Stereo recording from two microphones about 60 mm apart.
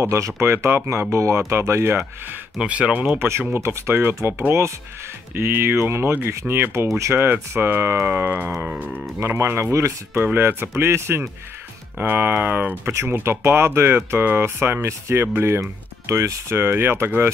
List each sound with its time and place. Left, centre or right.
0.0 s speech: right
0.4 s speech: right
2.6 s speech: centre
3.2 s speech: right
9.3 s speech: right
10.2 s speech: right
12.0 s speech: right
13.1 s speech: right